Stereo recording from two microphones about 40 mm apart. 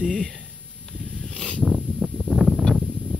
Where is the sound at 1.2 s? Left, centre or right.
Centre.